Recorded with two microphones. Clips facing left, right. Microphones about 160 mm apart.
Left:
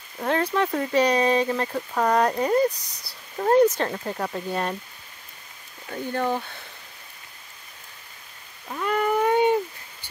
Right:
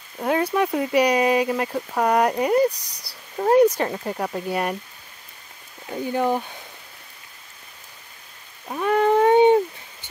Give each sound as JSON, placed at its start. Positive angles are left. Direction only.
{"t": 0.2, "sound": "speech", "side_deg": -10}
{"t": 5.9, "sound": "speech", "side_deg": -15}
{"t": 8.6, "sound": "cat", "side_deg": -20}